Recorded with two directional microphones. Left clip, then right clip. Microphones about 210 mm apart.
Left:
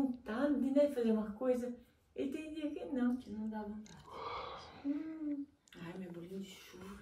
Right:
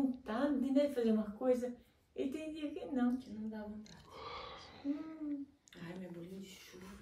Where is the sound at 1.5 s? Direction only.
Centre (ahead or behind); by 5.1 s 15° right (ahead or behind).